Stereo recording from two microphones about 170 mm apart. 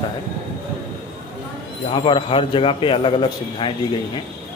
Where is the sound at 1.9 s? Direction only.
30° left (ahead or behind).